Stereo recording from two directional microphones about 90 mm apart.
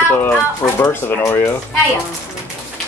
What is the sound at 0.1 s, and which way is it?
Speech, 25° left (ahead or behind).